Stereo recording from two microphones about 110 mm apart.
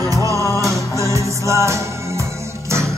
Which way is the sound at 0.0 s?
30° right (ahead or behind).